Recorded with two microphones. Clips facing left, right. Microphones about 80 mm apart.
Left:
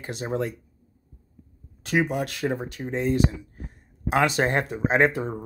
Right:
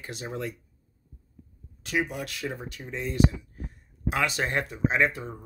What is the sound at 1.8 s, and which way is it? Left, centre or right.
Speech, left.